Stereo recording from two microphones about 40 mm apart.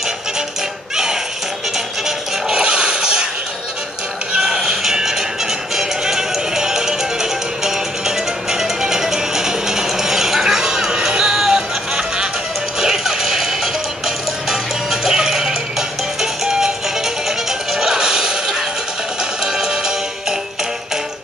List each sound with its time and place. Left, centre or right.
2.0 s music: centre
2.6 s a sound: right
4.4 s music: centre
19.4 s music: centre